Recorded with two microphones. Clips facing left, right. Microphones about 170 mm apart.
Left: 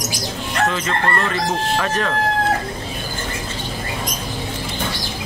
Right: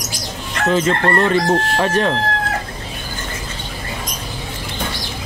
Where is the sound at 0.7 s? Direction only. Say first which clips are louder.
Right 5 dB; 30° right (ahead or behind).